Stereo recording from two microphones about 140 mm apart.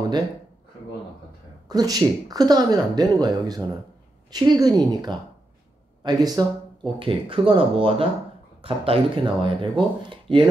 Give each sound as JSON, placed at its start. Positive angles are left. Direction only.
{"t": 1.7, "sound": "speech", "side_deg": -30}
{"t": 7.0, "sound": "speech", "side_deg": -40}